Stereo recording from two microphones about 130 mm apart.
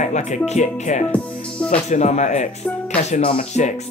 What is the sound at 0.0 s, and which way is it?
Speech, 65° left (ahead or behind).